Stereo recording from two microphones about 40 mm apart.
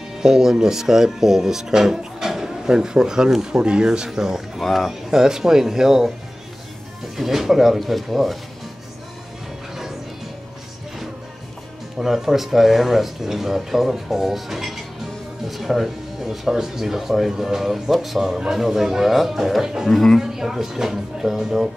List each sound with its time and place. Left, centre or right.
0.2 s speech: centre
4.6 s speech: centre
5.1 s speech: centre
7.2 s speech: centre
12.0 s speech: centre
19.9 s speech: centre
20.2 s speech: centre